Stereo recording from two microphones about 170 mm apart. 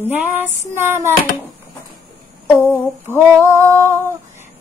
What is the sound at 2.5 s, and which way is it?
Humming, 10° left (ahead or behind).